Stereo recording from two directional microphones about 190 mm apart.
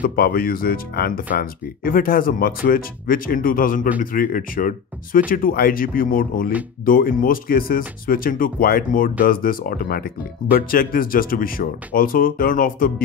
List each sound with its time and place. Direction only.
0.0 s speech: 50° left (ahead or behind)